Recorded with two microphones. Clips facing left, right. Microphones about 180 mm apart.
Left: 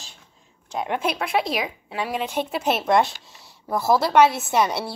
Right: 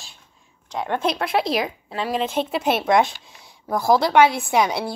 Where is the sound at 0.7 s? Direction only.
20° left (ahead or behind).